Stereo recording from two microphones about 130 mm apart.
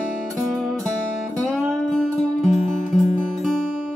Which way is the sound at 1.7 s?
Centre (ahead or behind).